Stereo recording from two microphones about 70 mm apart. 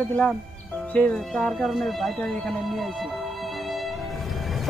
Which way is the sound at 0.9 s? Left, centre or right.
Centre.